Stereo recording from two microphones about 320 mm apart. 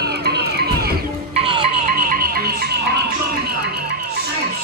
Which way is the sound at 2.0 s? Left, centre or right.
Right.